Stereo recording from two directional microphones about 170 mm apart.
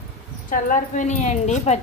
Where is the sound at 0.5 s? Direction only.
50° left (ahead or behind).